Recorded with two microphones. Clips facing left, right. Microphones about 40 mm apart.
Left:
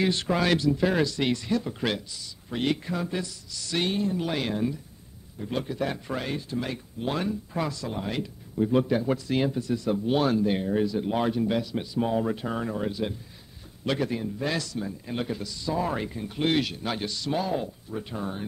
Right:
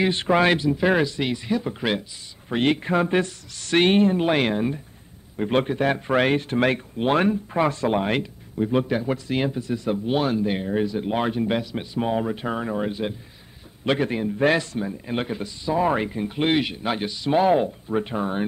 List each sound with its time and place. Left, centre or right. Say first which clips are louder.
0.0 s a man's voice: right 6 dB; right
2.5 s speech: right 7 dB; right
7.9 s speech: right 9 dB; right
9.0 s speech: right 1 dB; right
12.5 s a man's voice: right 3 dB; right
17.4 s speech: right 14 dB; right